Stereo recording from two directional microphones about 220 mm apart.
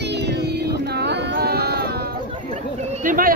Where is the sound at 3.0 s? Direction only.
40° right (ahead or behind).